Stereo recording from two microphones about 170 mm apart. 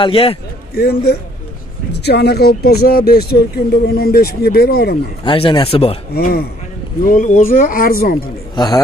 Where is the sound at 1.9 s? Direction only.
80° left; by 4.9 s 65° left (ahead or behind).